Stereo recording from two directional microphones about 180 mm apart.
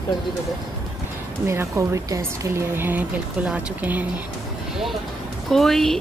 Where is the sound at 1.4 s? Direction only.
15° right (ahead or behind).